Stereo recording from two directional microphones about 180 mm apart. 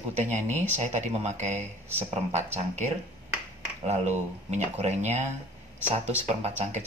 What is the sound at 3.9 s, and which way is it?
Speech, 40° right (ahead or behind).